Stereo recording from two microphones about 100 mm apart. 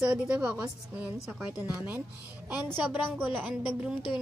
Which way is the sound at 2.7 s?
20° right (ahead or behind).